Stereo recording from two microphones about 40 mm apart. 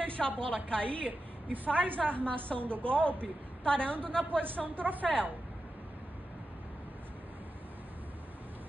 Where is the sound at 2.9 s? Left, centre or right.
Left.